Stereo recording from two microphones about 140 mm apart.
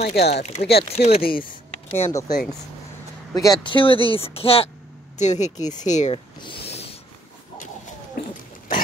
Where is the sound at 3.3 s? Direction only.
25° left (ahead or behind); by 4.7 s 45° left (ahead or behind).